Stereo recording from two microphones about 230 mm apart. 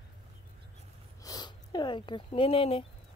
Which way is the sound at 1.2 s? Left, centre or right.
Centre.